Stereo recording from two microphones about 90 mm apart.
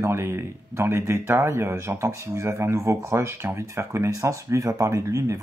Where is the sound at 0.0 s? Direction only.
30° right (ahead or behind).